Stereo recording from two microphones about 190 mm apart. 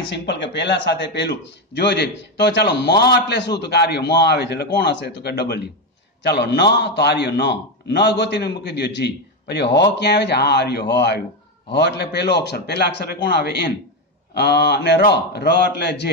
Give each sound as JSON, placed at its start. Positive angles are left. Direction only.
{"t": 0.0, "sound": "a man's voice", "side_deg": 70}